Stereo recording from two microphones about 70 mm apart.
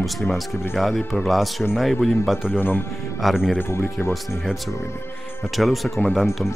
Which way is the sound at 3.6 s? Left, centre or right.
Left.